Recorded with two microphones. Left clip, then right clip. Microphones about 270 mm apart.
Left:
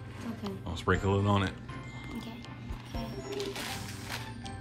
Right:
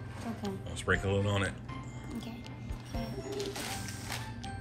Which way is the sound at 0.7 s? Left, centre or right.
Left.